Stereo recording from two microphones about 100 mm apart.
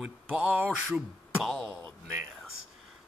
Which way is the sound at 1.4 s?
Centre (ahead or behind).